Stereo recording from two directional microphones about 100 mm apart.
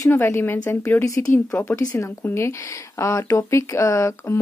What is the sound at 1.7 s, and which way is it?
Speech, 30° left (ahead or behind).